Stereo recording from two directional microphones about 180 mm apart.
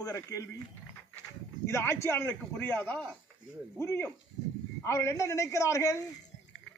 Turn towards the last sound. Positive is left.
turn(degrees=15)  # may be behind; listen again after turning